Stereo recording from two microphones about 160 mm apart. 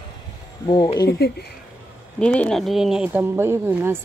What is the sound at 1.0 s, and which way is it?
Speech, 90° left.